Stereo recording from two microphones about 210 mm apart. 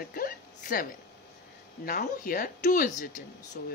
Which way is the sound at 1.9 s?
40° left (ahead or behind).